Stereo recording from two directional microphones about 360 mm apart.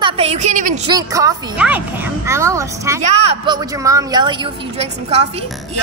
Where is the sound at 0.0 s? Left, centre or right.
Centre.